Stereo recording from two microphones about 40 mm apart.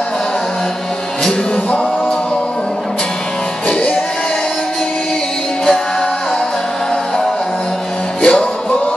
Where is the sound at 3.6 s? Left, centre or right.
Left.